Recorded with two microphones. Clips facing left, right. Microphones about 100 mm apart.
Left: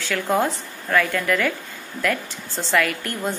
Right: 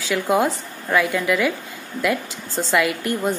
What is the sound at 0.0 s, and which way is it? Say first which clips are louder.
A woman's voice: right 2 dB; 15° right (ahead or behind).